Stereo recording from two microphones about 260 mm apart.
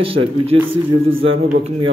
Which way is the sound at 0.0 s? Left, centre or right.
Right.